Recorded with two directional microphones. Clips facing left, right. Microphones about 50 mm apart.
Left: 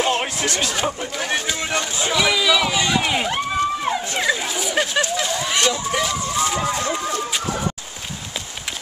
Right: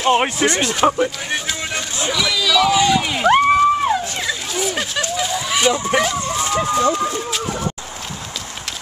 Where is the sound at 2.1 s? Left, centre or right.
Centre.